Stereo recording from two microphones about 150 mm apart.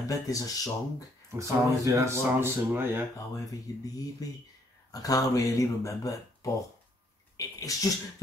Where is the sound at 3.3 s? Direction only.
25° left (ahead or behind).